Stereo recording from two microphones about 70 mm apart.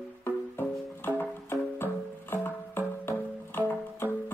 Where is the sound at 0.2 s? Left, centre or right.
Left.